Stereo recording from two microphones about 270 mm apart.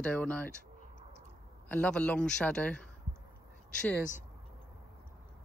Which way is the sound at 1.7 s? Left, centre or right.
Centre.